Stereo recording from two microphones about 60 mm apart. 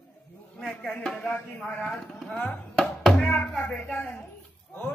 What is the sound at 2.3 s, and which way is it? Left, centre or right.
Speech, left.